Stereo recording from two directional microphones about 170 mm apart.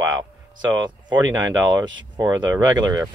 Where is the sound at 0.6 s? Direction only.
25° right (ahead or behind).